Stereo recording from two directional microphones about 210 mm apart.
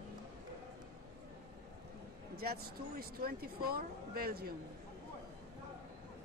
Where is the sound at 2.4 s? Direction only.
45° right (ahead or behind).